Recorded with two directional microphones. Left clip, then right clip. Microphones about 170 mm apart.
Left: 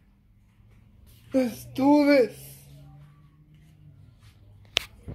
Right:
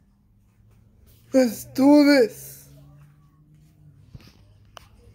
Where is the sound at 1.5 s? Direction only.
30° right (ahead or behind).